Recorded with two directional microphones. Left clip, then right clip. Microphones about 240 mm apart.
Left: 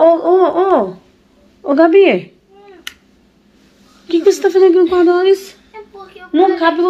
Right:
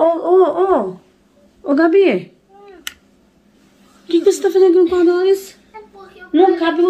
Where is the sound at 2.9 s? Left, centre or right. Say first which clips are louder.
Even; right.